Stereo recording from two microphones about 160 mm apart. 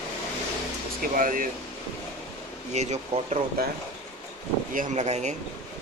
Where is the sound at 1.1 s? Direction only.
55° right (ahead or behind).